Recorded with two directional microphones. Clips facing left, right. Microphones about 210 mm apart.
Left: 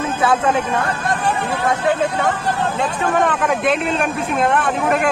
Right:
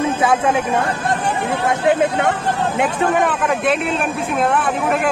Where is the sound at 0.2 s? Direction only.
10° right (ahead or behind).